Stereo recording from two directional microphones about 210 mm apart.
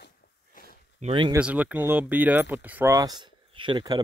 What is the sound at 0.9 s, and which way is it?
Speech, 25° right (ahead or behind).